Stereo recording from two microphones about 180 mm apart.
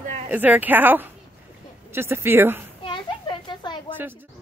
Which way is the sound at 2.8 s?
25° left (ahead or behind).